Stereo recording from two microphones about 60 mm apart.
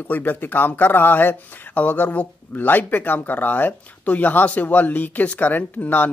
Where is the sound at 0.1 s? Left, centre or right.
Left.